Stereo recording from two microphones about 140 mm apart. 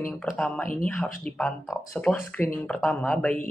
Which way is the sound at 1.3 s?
Centre (ahead or behind).